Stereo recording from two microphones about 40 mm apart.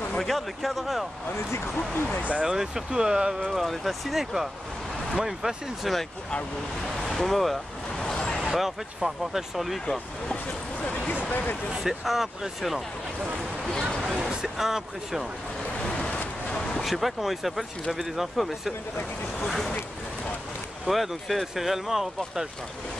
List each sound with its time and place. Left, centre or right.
0.2 s speech: centre
2.4 s speech: centre
7.0 s a sound: centre
8.0 s a sound: centre
8.5 s speech: centre
10.3 s a sound: left
11.2 s speech: left
11.8 s speech: centre
13.7 s speech: centre
14.3 s speech: centre
15.8 s vehicle: left
16.8 s speech: centre
19.4 s speech: centre
20.9 s speech: centre